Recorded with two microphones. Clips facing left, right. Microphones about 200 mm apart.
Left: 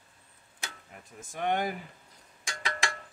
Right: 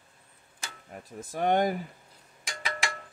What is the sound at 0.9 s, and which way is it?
Speech, 35° right (ahead or behind).